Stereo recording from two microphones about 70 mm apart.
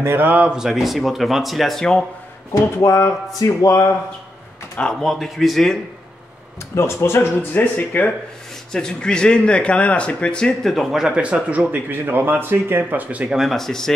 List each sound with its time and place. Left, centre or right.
0.0 s speech: right
0.3 s speech: centre
0.6 s speech: centre
2.5 s speech: left
5.0 s speech: centre
6.7 s speech: left
7.7 s speech: left
8.7 s speech: centre
11.7 s speech: right
13.4 s speech: centre